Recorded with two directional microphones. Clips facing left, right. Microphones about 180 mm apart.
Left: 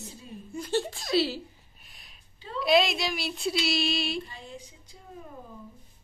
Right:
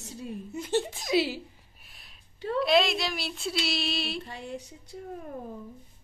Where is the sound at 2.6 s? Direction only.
Centre (ahead or behind).